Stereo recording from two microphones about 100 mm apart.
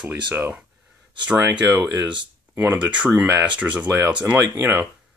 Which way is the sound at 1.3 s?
5° right (ahead or behind).